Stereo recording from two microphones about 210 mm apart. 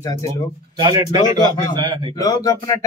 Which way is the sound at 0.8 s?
20° right (ahead or behind).